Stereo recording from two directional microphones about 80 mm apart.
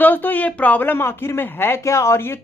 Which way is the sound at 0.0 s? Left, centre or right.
Left.